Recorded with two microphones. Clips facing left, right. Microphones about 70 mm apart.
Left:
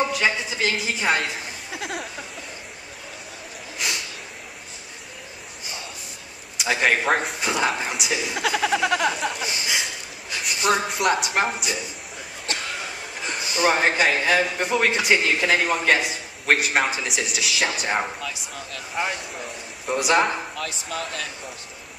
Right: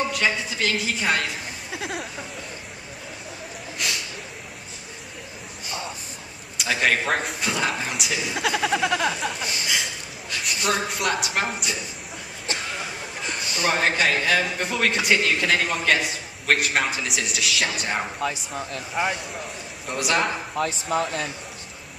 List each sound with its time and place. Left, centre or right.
0.0 s a man's voice: centre
3.8 s a sound: centre
6.6 s a man's voice: centre
13.3 s speech: centre
18.2 s speech: right
18.9 s speech: centre
20.1 s speech: centre
20.5 s speech: right